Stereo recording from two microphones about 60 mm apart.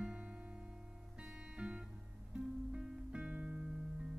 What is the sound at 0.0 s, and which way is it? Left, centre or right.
Music, centre.